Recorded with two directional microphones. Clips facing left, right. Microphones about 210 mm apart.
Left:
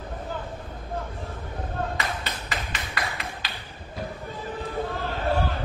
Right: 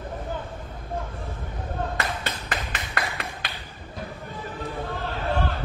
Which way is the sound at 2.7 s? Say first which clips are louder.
Right 1 dB; 55° right (ahead or behind).